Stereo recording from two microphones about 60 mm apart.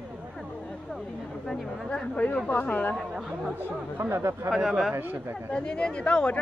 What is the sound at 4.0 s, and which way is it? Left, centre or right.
Speech, right.